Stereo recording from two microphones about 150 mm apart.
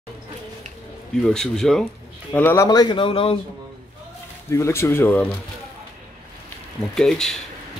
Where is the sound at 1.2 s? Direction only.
5° left (ahead or behind).